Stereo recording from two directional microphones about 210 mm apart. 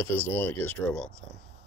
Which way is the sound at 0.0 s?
10° left (ahead or behind).